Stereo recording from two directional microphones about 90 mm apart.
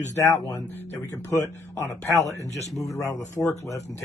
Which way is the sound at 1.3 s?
35° left (ahead or behind).